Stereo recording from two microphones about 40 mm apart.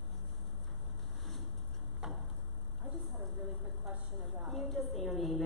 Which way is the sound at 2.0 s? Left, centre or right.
Centre.